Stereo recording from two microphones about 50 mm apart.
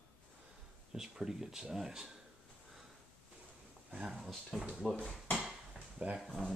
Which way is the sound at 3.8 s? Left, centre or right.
Centre.